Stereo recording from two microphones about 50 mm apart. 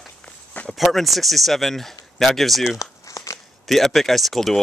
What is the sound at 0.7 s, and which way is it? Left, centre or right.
Speech, centre.